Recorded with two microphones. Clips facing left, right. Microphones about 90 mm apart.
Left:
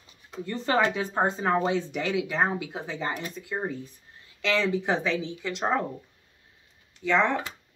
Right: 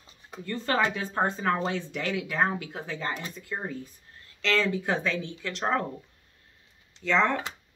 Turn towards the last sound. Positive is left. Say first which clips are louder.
# left 1 dB
turn(degrees=15)  # may be behind; listen again after turning